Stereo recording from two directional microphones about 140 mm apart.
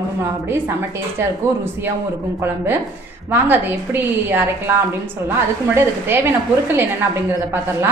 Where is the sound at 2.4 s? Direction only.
15° right (ahead or behind).